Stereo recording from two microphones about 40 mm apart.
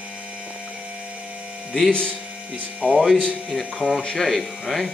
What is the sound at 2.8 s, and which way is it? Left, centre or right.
Speech, right.